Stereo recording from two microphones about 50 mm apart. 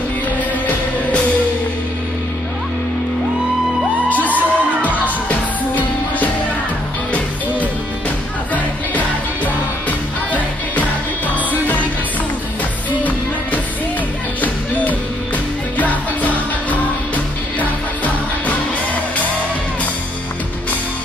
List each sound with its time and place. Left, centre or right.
4.3 s music: right
4.9 s music: left
9.8 s music: left
15.8 s music: left